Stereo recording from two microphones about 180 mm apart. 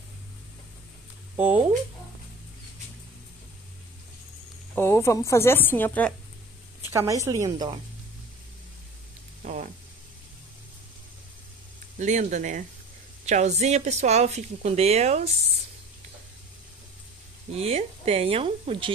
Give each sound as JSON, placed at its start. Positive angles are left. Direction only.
{"t": 1.3, "sound": "speech", "side_deg": -10}
{"t": 4.7, "sound": "a woman's voice", "side_deg": 15}
{"t": 6.9, "sound": "a woman's voice", "side_deg": -15}
{"t": 9.4, "sound": "a sound", "side_deg": -45}
{"t": 12.0, "sound": "a woman's voice", "side_deg": -40}
{"t": 17.6, "sound": "a woman's voice", "side_deg": -35}